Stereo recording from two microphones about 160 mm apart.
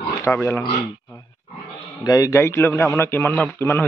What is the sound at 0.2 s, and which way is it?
Speech, 15° left (ahead or behind).